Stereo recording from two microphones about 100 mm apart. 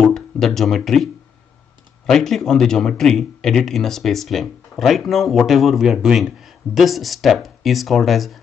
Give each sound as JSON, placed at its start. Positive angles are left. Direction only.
{"t": 0.0, "sound": "speech", "side_deg": 5}